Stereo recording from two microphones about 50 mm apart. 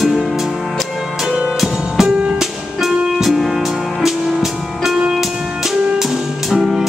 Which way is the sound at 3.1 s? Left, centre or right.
Centre.